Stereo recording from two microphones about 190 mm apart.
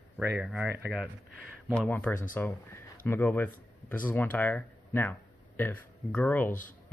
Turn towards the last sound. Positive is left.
turn(degrees=45)  # may be behind; listen again after turning